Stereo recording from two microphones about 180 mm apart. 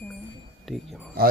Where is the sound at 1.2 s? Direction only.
55° right (ahead or behind).